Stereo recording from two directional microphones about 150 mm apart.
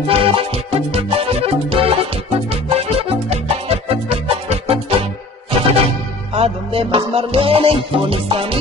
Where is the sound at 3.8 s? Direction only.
40° right (ahead or behind).